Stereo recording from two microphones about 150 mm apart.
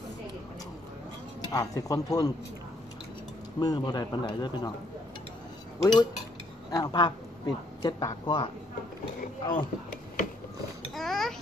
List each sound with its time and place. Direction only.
1.4 s speech: 25° left (ahead or behind)
3.5 s speech: 25° left (ahead or behind)
6.7 s a woman's voice: 25° left (ahead or behind)
11.0 s a sound: centre (ahead or behind)